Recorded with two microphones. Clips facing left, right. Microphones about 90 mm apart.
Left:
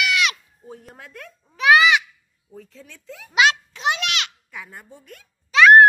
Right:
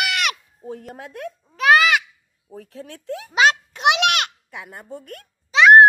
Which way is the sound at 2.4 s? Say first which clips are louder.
Right 6 dB; 60° right (ahead or behind).